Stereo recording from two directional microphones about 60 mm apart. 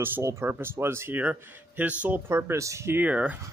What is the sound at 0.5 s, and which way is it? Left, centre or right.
Speech, right.